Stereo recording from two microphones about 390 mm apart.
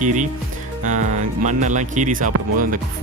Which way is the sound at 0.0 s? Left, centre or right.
Centre.